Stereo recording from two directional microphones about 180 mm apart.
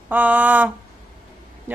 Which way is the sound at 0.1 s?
10° right (ahead or behind).